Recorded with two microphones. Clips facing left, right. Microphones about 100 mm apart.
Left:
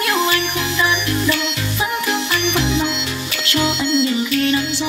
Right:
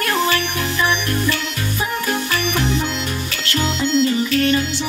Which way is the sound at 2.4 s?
40° right (ahead or behind).